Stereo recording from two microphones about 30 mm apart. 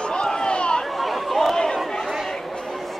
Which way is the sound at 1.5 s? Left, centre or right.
Left.